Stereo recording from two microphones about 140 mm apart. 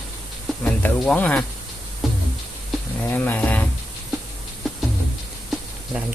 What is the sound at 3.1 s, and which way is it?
Speech, 10° left (ahead or behind).